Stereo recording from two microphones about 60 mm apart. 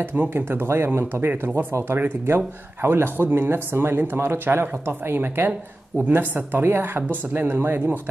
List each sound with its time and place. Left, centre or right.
0.0 s speech: right